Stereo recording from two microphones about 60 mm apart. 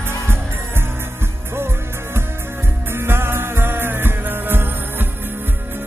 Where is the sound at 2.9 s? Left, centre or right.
Right.